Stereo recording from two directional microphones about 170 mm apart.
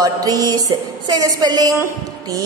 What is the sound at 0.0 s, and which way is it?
A woman's voice, 20° right (ahead or behind).